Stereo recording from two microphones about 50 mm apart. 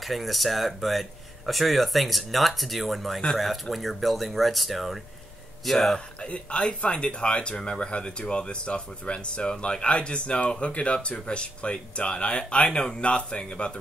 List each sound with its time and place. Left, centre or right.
0.0 s speech: centre
6.2 s speech: left